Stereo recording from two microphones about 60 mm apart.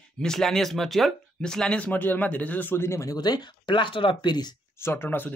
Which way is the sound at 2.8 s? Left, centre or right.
Left.